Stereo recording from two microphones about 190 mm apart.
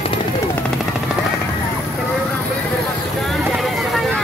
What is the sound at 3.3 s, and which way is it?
Vehicle, centre (ahead or behind).